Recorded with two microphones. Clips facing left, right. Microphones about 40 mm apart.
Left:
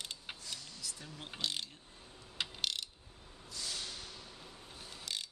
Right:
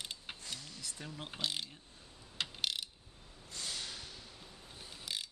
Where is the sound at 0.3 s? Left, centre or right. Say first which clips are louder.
Left 1 dB; centre.